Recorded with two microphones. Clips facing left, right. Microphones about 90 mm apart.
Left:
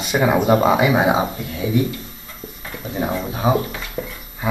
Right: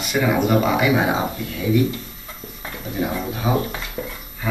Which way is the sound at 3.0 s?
30° left (ahead or behind).